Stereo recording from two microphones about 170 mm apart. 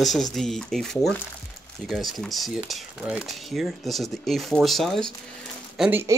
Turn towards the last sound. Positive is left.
turn(degrees=-10)  # may be behind; listen again after turning